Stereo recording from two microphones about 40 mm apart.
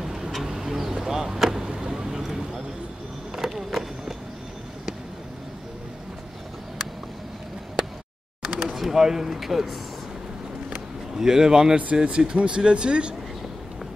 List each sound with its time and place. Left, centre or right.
0.0 s vehicle: centre
3.3 s a sound: centre
8.5 s speech: centre
11.1 s a man's voice: centre
11.8 s speech: right